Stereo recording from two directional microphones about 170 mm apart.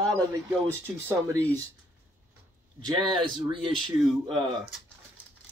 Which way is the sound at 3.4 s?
30° right (ahead or behind).